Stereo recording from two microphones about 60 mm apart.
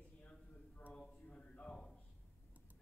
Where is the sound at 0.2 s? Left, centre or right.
Left.